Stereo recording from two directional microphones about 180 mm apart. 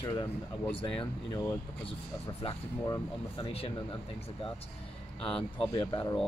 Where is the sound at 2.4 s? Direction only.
20° left (ahead or behind).